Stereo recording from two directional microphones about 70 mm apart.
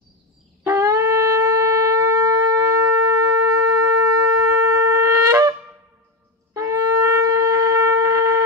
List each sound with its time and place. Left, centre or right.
0.7 s shofar: right
6.5 s shofar: right